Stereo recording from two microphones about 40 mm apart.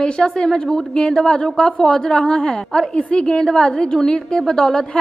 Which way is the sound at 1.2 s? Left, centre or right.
Left.